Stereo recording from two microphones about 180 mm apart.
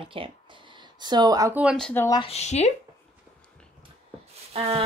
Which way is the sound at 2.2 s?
35° left (ahead or behind).